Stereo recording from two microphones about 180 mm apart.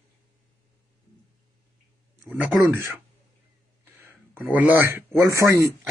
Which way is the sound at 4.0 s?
10° right (ahead or behind).